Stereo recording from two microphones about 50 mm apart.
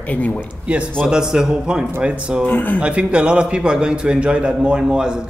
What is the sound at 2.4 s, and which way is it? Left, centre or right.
Speech, left.